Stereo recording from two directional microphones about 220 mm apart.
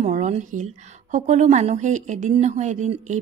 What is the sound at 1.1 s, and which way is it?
A woman's voice, 35° right (ahead or behind).